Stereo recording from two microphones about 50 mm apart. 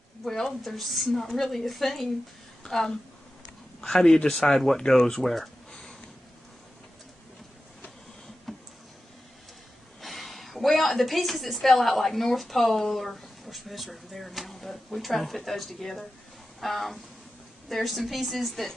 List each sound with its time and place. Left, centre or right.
0.2 s a woman's voice: centre
8.5 s a sound: centre
10.0 s a woman's voice: centre